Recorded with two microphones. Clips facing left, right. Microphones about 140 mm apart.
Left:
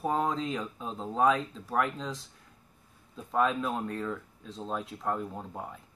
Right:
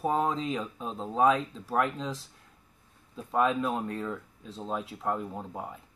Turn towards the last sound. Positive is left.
turn(degrees=-5)  # may be behind; listen again after turning